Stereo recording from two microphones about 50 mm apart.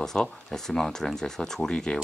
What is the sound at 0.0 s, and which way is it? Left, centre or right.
Speech, centre.